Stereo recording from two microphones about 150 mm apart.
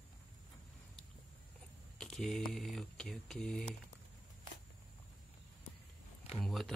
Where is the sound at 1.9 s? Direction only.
5° left (ahead or behind).